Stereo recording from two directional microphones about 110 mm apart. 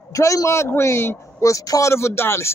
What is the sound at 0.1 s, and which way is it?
A man's voice, 30° left (ahead or behind).